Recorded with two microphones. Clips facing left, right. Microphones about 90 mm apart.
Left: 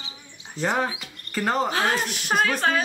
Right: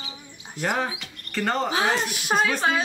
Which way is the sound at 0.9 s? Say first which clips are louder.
Even; 5° left (ahead or behind).